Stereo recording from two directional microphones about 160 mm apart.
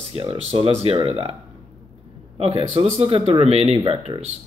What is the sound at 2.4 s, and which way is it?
Speech, 40° right (ahead or behind).